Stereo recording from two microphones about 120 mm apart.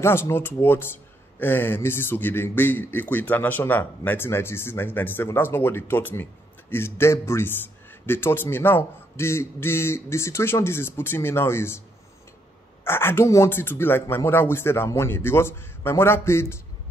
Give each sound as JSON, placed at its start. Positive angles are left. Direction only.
{"t": 0.0, "sound": "speech", "side_deg": 20}
{"t": 12.8, "sound": "speech", "side_deg": 20}